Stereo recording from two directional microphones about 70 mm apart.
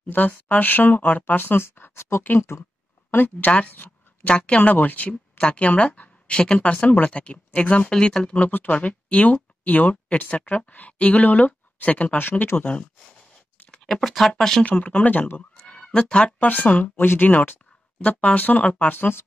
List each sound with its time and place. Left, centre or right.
0.0 s speech: left
3.1 s speech: left; by 8.4 s centre
8.4 s speech: left
13.7 s speech: centre
14.6 s speech: centre
15.6 s speech: centre; by 19.2 s left